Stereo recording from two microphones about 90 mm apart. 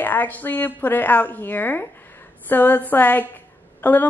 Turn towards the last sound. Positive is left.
turn(degrees=20)  # may be behind; listen again after turning